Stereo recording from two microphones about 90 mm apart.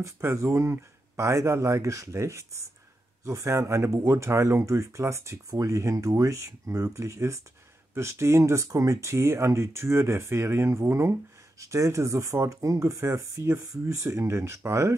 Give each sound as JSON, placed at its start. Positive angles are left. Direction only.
{"t": 0.0, "sound": "speech", "side_deg": -30}